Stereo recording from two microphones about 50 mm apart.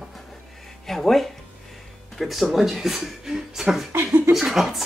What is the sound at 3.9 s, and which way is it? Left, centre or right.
Speech, right.